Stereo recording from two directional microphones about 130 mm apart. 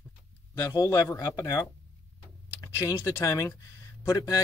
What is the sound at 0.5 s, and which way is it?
Speech, 25° left (ahead or behind).